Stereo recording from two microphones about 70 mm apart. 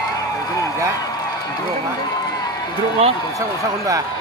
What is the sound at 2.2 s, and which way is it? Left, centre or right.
Run, left.